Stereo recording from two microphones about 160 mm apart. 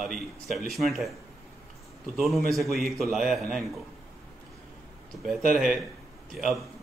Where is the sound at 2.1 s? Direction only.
Centre (ahead or behind).